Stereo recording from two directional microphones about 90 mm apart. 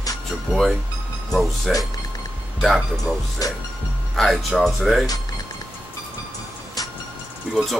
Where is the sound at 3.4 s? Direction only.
40° left (ahead or behind).